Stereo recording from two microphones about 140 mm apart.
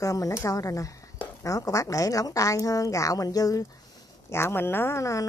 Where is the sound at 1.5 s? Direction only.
25° left (ahead or behind).